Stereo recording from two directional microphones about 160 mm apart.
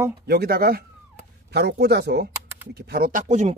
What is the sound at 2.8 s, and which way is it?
Speech, 65° right (ahead or behind).